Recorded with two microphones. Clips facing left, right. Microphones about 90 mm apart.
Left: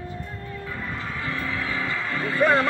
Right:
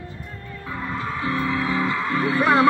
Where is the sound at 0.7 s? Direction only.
20° right (ahead or behind).